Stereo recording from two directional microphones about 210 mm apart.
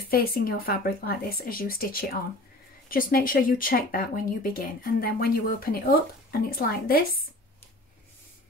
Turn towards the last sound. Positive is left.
turn(degrees=45)  # may be behind; listen again after turning